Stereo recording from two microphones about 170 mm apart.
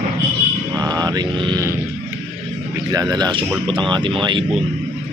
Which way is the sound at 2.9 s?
20° right (ahead or behind).